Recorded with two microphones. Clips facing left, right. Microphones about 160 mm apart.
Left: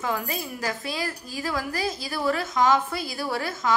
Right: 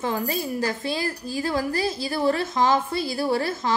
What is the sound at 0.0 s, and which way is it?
A woman's voice, 30° right (ahead or behind).